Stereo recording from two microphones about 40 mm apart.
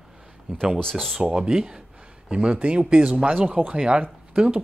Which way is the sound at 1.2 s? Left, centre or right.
Centre.